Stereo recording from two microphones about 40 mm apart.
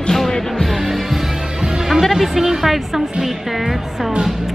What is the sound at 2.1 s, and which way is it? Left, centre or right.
Speech, centre.